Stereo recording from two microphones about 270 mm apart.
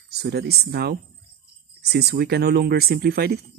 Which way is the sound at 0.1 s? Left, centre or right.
Right.